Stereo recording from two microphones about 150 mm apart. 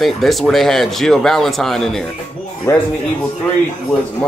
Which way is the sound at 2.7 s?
20° left (ahead or behind).